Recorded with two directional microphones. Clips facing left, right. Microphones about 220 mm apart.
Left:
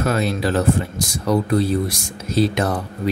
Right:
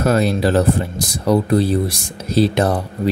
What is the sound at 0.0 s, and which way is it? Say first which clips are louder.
Speech: right 4 dB; 40° right (ahead or behind).